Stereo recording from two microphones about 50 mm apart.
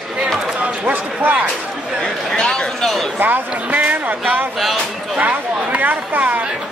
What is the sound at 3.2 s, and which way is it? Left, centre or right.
Speech, right.